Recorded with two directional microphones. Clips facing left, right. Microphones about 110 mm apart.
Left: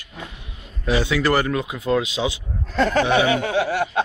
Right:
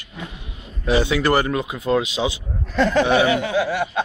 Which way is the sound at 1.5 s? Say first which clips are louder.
Right 1 dB; 5° right (ahead or behind).